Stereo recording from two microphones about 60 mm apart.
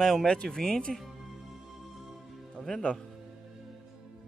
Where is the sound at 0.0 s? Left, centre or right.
Centre.